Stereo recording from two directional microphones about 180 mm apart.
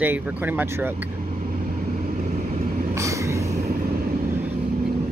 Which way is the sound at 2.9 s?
15° right (ahead or behind).